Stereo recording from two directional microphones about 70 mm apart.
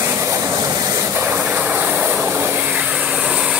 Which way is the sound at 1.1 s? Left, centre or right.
Right.